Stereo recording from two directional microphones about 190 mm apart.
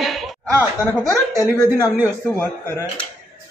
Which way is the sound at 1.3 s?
15° right (ahead or behind).